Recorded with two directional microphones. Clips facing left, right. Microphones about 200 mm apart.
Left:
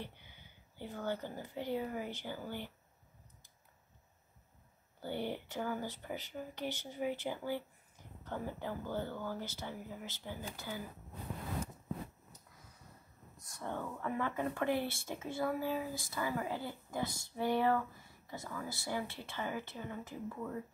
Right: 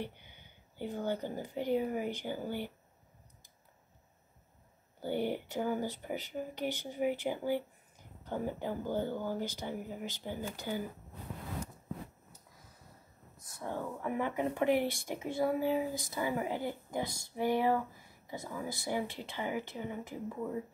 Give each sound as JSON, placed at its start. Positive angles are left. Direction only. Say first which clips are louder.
{"t": 0.7, "sound": "speech", "louder": "right 4 dB", "side_deg": -15}
{"t": 5.0, "sound": "speech", "louder": "right 5 dB", "side_deg": -15}
{"t": 13.5, "sound": "speech", "louder": "right 3 dB", "side_deg": -10}